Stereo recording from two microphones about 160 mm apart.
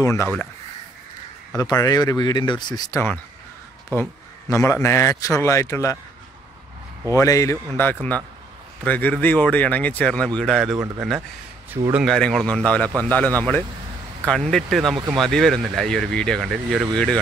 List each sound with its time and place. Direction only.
0.0 s a man's voice: 15° left (ahead or behind)
1.6 s a man's voice: 25° left (ahead or behind)
7.1 s a man's voice: 20° left (ahead or behind); by 10.8 s 5° left (ahead or behind)
11.9 s a man's voice: centre (ahead or behind)